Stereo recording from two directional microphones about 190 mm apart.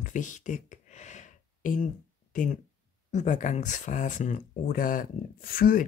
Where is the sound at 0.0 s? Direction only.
40° left (ahead or behind).